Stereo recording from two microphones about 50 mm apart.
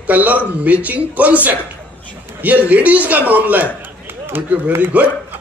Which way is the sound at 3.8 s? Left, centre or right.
Right.